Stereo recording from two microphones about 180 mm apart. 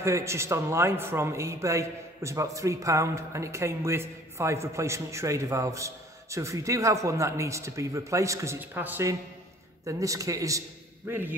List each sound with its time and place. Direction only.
0.0 s a man's voice: 15° right (ahead or behind)